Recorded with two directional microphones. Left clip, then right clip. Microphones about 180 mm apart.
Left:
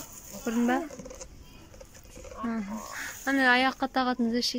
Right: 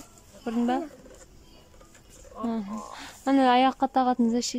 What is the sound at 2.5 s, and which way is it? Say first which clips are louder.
Speech: right 3 dB; 15° right (ahead or behind).